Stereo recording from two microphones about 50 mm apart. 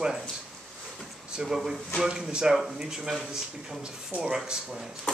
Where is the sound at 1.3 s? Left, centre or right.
Centre.